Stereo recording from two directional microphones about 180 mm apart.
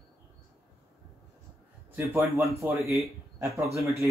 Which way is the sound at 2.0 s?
10° right (ahead or behind).